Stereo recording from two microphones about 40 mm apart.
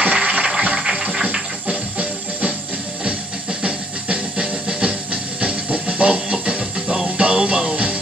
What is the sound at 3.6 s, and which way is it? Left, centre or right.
Music, right.